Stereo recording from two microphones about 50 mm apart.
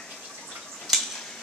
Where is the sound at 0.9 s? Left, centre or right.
Centre.